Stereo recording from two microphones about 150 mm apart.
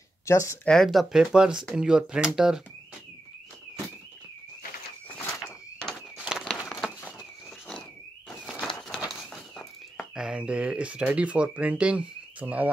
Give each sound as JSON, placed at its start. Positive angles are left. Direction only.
{"t": 0.2, "sound": "speech", "side_deg": 20}
{"t": 0.7, "sound": "speech", "side_deg": 0}
{"t": 5.0, "sound": "walk", "side_deg": 10}
{"t": 5.4, "sound": "a sound", "side_deg": 0}
{"t": 8.5, "sound": "run", "side_deg": 5}
{"t": 9.0, "sound": "a sound", "side_deg": 0}